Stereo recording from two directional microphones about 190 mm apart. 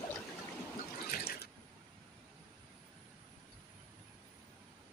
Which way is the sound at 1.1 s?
55° left (ahead or behind).